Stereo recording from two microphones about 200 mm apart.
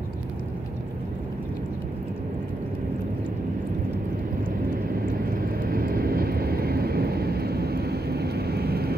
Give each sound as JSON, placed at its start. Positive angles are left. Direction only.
{"t": 5.4, "sound": "vehicle", "side_deg": -45}